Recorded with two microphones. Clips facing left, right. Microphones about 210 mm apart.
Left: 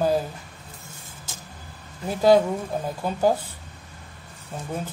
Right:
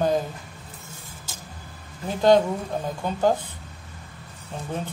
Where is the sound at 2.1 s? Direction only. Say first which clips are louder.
Even; 5° left (ahead or behind).